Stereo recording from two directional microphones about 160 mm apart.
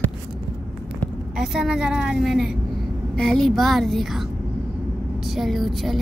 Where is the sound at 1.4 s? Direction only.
Centre (ahead or behind).